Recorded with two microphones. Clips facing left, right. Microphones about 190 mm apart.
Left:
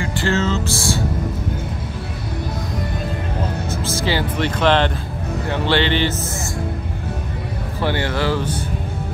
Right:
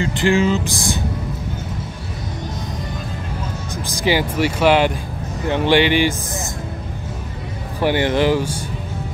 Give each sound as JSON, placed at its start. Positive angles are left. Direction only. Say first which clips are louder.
{"t": 0.0, "sound": "speech", "louder": "right 4 dB", "side_deg": -15}
{"t": 3.7, "sound": "speech", "louder": "right 4 dB", "side_deg": -15}
{"t": 7.8, "sound": "speech", "louder": "right 5 dB", "side_deg": -15}